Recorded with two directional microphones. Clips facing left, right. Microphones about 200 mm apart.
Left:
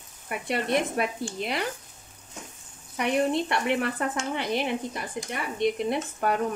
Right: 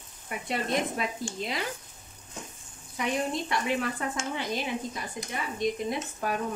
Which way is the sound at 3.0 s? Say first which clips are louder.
Left 5 dB; 65° left (ahead or behind).